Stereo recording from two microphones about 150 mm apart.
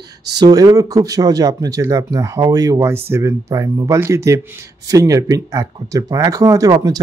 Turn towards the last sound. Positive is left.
turn(degrees=-25)  # may be behind; listen again after turning